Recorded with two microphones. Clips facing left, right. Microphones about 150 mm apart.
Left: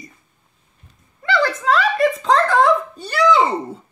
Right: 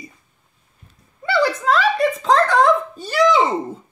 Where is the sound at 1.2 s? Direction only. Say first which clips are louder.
Right 1 dB; 5° right (ahead or behind).